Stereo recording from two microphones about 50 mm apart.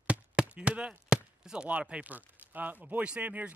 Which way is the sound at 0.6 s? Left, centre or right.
Right.